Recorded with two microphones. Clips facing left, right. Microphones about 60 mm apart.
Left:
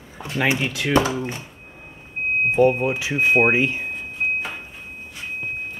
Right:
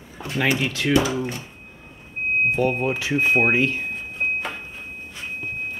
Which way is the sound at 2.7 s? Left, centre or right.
Centre.